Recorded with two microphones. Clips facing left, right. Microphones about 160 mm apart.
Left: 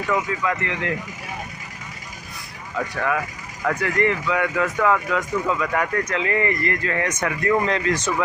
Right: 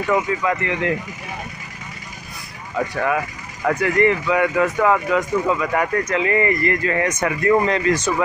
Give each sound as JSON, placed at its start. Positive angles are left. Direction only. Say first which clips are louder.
{"t": 0.0, "sound": "speech", "louder": "right 3 dB", "side_deg": -20}
{"t": 2.8, "sound": "speech", "louder": "right 3 dB", "side_deg": -25}
{"t": 7.1, "sound": "speech", "louder": "right 3 dB", "side_deg": -20}
{"t": 7.6, "sound": "speech", "louder": "right 3 dB", "side_deg": -5}